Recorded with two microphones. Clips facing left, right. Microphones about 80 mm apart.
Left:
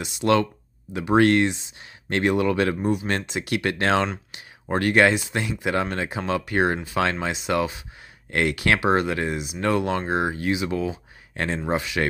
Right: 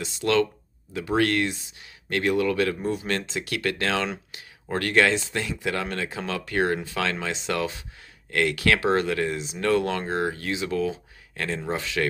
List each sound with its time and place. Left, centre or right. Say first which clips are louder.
0.0 s speech: left 2 dB; centre
8.3 s speech: left 1 dB; left
11.3 s speech: left 3 dB; left
11.6 s speech: left 2 dB; centre